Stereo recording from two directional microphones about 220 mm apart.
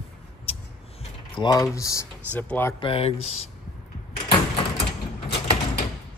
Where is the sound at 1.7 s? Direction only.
15° left (ahead or behind).